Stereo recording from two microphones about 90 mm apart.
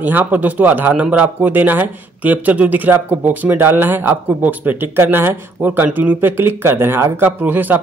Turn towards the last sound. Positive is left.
turn(degrees=-20)  # may be behind; listen again after turning